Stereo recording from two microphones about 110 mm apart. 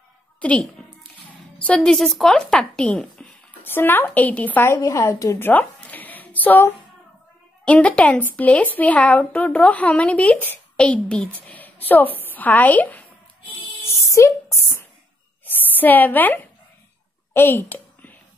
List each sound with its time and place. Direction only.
0.4 s a woman's voice: 10° left (ahead or behind)
3.6 s a woman's voice: 20° left (ahead or behind)
13.8 s a sound: 25° left (ahead or behind)